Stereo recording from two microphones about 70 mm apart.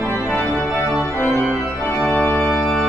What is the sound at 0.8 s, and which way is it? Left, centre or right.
Organ, left.